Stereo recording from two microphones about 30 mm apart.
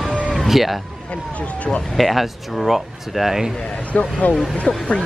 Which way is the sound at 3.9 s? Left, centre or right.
Left.